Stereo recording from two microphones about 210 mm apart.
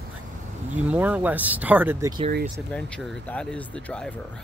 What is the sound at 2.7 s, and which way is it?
Speech, 5° left (ahead or behind).